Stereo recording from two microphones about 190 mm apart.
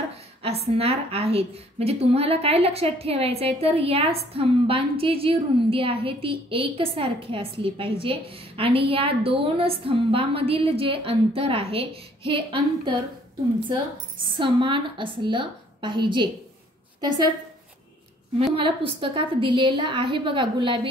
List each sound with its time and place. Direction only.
0.4 s a woman's voice: 30° right (ahead or behind)
14.2 s a woman's voice: 25° right (ahead or behind)
18.6 s a woman's voice: 30° right (ahead or behind)